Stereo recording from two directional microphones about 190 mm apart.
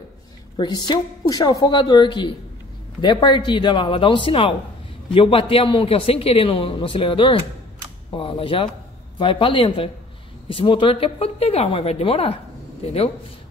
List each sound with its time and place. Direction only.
0.6 s a woman's voice: 20° left (ahead or behind)